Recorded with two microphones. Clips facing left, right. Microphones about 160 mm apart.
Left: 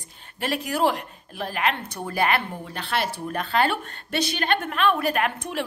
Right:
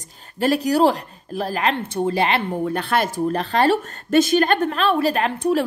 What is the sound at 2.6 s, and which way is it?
A woman's voice, 55° right (ahead or behind).